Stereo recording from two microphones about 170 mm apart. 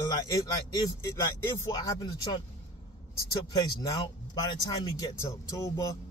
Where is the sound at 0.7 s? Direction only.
20° left (ahead or behind).